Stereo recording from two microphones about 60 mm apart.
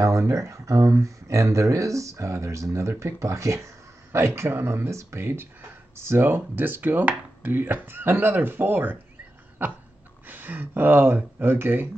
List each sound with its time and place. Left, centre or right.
0.0 s speech: right